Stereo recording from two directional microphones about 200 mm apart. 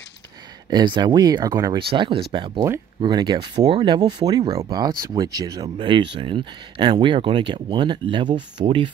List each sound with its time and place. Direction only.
0.7 s speech: 20° right (ahead or behind)